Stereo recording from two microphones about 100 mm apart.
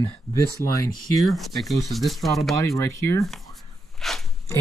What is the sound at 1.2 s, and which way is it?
Speech, centre (ahead or behind).